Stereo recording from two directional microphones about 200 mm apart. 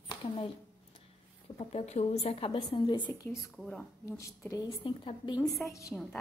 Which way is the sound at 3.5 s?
5° left (ahead or behind).